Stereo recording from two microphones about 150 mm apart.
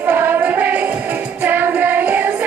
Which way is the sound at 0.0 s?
10° right (ahead or behind).